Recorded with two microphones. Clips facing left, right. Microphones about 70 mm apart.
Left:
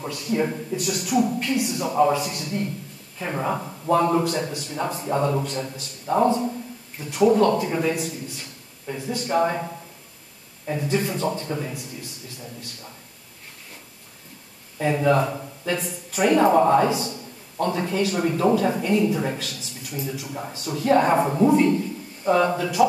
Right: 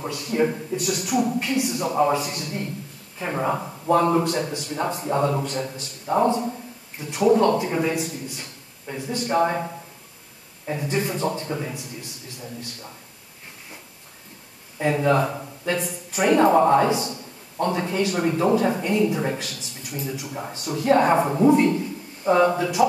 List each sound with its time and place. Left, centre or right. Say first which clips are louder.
0.0 s a man's voice: right 2 dB; centre
14.8 s a man's voice: even; centre